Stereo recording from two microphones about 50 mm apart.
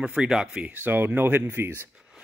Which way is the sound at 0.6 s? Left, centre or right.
Right.